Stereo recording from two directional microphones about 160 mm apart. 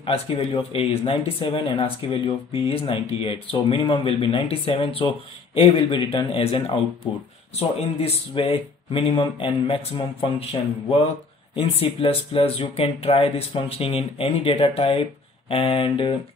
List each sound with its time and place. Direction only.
0.0 s speech: 35° left (ahead or behind)